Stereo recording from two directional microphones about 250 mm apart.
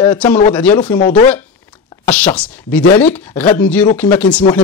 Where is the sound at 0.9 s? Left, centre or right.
Left.